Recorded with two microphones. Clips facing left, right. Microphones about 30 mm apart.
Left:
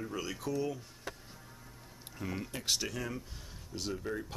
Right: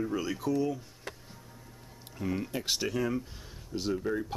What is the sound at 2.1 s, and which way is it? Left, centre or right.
Speech, centre.